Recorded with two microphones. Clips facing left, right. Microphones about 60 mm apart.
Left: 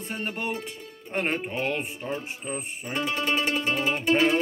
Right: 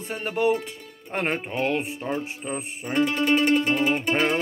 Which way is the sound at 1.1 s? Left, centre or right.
Right.